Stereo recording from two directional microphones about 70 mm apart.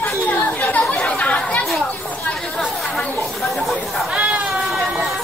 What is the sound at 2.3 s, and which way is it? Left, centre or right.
Chatter, centre.